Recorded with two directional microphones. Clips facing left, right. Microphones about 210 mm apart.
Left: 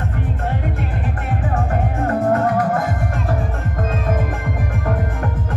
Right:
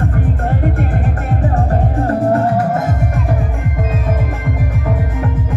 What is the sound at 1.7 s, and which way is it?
Music, 30° right (ahead or behind).